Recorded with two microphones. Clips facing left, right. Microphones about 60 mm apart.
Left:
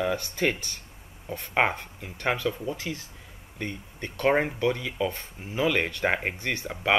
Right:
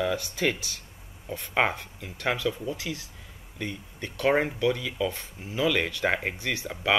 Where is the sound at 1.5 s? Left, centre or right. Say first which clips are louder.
Left 1 dB; centre.